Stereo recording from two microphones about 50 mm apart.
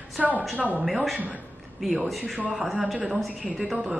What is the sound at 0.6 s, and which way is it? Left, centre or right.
Speech, right.